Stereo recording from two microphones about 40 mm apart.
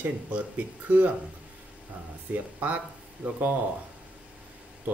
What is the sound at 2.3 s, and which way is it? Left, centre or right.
Speech, right.